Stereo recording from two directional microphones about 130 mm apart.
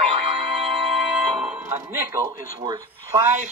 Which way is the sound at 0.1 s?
45° right (ahead or behind).